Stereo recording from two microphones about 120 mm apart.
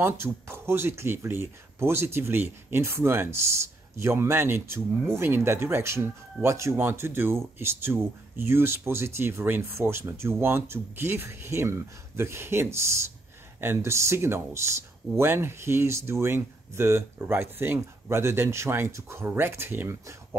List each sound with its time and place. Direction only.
0.0 s speech: 20° right (ahead or behind)